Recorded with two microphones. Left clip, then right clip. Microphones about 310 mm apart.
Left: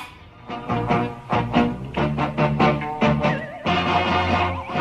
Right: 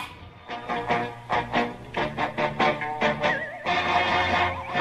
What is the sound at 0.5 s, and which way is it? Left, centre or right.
Music, right.